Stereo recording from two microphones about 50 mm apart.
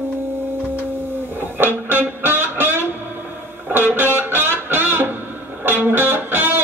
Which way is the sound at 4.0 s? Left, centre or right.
Right.